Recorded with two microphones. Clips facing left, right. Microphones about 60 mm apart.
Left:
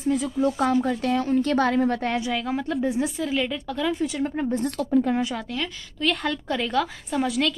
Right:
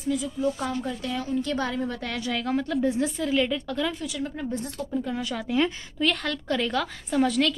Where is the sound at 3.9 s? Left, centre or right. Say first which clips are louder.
Left 6 dB; left.